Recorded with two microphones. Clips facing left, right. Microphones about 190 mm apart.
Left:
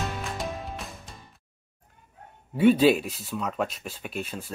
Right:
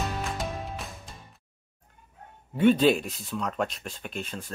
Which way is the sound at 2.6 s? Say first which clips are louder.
Left 2 dB; 10° left (ahead or behind).